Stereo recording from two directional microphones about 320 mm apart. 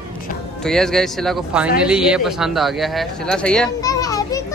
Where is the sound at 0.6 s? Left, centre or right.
Centre.